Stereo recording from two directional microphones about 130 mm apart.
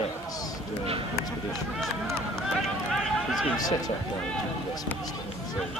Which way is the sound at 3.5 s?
30° left (ahead or behind).